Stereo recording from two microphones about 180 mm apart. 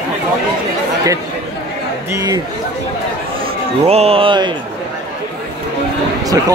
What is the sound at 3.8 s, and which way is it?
Speech, 35° right (ahead or behind).